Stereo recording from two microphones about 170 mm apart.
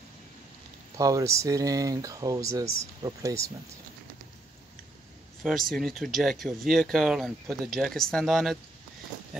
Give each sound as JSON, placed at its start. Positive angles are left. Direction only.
{"t": 0.9, "sound": "speech", "side_deg": -20}
{"t": 5.4, "sound": "speech", "side_deg": 0}